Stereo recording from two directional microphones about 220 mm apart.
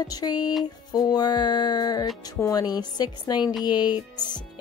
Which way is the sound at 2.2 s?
15° left (ahead or behind).